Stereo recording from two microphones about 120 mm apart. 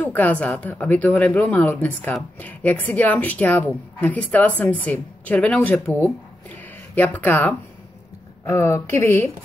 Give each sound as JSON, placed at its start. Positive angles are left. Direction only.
{"t": 0.0, "sound": "a woman's voice", "side_deg": 15}
{"t": 6.0, "sound": "a sound", "side_deg": 15}
{"t": 8.5, "sound": "speech", "side_deg": 25}